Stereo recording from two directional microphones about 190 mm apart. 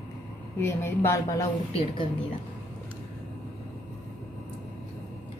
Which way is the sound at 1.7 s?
30° left (ahead or behind).